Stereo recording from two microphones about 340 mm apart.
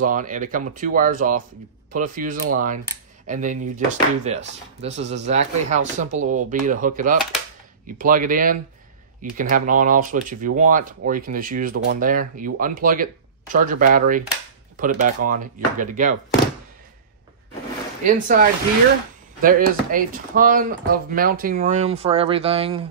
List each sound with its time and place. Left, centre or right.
0.0 s speech: right
18.0 s speech: right
19.4 s speech: right